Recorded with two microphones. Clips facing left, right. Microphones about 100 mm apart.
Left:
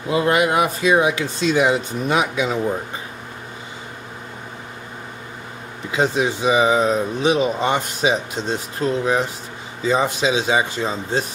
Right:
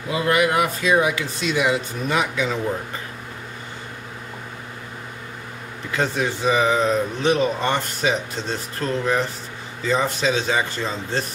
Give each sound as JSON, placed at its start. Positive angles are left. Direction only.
{"t": 0.1, "sound": "speech", "side_deg": 30}
{"t": 5.9, "sound": "speech", "side_deg": 15}